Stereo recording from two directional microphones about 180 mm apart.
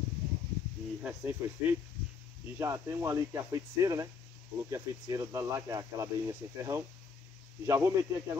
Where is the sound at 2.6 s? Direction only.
15° right (ahead or behind).